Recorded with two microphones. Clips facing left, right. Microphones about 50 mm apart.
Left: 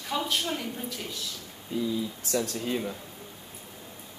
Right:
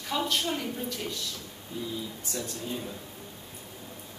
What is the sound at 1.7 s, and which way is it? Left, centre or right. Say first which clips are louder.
Speech: left 6 dB; left.